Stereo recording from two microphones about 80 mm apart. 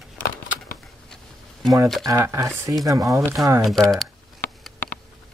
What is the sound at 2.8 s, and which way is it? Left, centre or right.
Speech, right.